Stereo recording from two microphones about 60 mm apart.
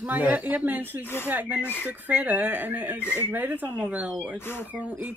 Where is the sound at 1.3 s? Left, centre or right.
Right.